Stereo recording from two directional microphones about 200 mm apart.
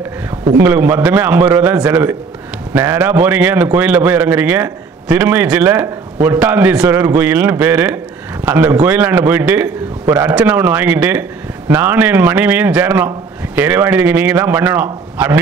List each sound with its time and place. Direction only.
0.6 s a man's voice: 10° right (ahead or behind)